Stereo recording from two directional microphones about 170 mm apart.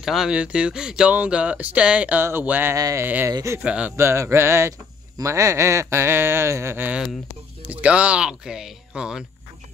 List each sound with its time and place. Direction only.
0.0 s speech: centre (ahead or behind)